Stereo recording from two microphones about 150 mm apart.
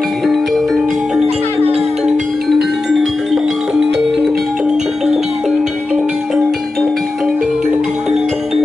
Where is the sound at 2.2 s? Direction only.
90° right.